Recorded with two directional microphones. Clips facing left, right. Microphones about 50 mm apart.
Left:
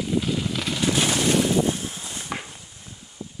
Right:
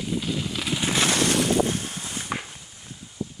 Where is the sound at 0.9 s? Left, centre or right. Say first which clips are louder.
Even; right.